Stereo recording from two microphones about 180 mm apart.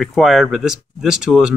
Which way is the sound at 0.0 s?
Centre (ahead or behind).